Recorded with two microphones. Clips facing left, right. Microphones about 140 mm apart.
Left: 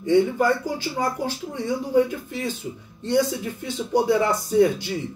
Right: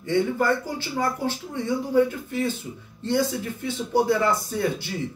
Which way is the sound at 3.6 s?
15° left (ahead or behind).